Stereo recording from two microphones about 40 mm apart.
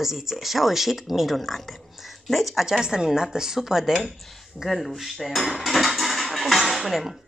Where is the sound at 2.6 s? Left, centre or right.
Centre.